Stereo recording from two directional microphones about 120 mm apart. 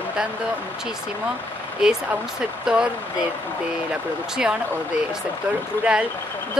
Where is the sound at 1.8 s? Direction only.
5° right (ahead or behind).